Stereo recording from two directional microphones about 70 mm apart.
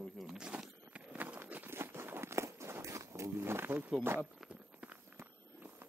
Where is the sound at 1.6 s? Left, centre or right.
Right.